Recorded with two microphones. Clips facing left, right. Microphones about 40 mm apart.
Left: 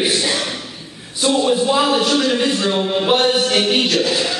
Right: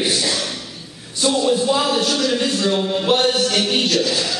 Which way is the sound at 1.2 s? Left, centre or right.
Centre.